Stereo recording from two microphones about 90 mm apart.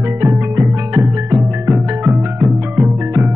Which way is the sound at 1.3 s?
20° right (ahead or behind).